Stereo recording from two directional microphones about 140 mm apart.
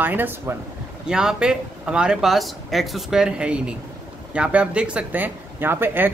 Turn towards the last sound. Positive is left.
turn(degrees=-15)  # may be behind; listen again after turning